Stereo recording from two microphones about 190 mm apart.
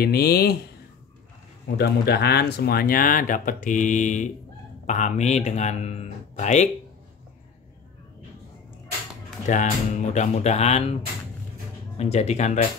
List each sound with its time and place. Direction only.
0.0 s speech: 55° left (ahead or behind)
1.8 s a man's voice: 60° left (ahead or behind); by 6.7 s 40° left (ahead or behind)
9.5 s a man's voice: 40° left (ahead or behind)
12.0 s a man's voice: 35° left (ahead or behind)